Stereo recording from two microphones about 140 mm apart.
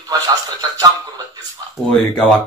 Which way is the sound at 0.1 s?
30° right (ahead or behind).